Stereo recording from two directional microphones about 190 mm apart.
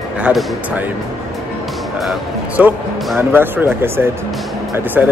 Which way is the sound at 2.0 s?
5° right (ahead or behind).